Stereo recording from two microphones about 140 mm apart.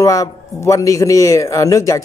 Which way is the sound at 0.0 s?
20° left (ahead or behind).